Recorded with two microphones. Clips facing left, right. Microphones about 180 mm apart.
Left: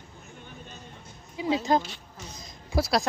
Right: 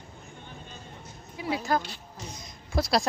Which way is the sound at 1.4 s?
20° left (ahead or behind).